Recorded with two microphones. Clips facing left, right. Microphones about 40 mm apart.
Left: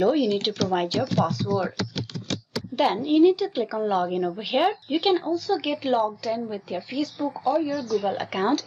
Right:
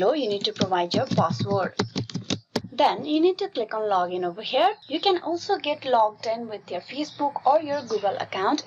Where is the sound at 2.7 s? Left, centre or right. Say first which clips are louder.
Even; centre.